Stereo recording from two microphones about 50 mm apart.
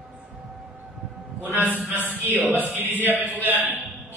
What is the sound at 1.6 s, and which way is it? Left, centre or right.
Speech, right.